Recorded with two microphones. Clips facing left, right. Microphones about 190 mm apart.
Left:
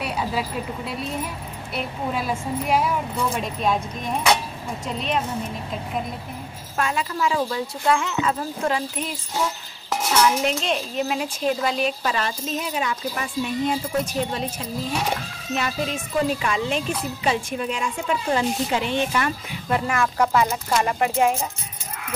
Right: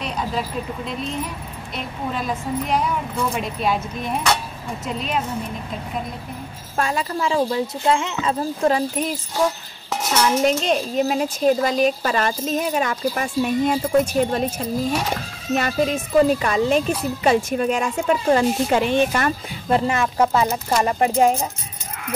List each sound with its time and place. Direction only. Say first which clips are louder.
0.0 s a woman's voice: even; 10° left (ahead or behind)
3.3 s speech: even; 5° right (ahead or behind)
4.8 s speech: right 1 dB; centre (ahead or behind)
6.8 s speech: right 1 dB; 40° right (ahead or behind)
10.2 s speech: right 3 dB; 40° right (ahead or behind)
19.7 s speech: right 3 dB; 25° right (ahead or behind)